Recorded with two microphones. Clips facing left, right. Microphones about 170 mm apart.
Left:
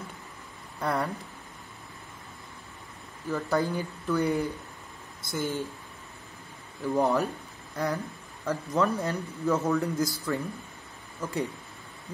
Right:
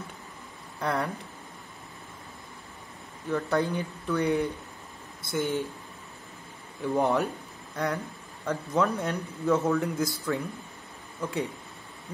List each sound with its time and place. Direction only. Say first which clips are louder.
0.7 s speech: even; centre (ahead or behind)
3.3 s speech: right 1 dB; centre (ahead or behind)
5.3 s speech: right 3 dB; 65° right (ahead or behind)
6.8 s speech: even; centre (ahead or behind)